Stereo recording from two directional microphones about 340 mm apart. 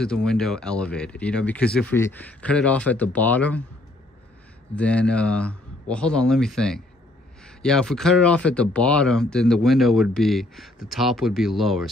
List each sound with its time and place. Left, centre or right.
0.0 s speech: centre
4.7 s speech: centre